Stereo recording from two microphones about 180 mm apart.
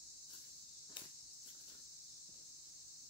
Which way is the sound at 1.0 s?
25° left (ahead or behind).